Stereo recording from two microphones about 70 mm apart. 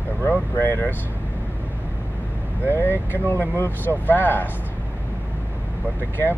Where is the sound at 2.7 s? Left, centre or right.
Left.